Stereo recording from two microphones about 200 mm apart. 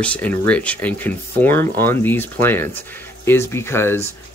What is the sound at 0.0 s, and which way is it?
Speech, 5° left (ahead or behind).